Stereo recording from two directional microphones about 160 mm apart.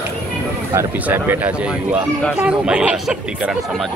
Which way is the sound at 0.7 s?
10° right (ahead or behind).